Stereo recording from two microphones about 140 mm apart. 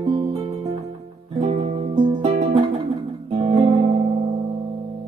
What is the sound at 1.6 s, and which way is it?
Music, 50° right (ahead or behind).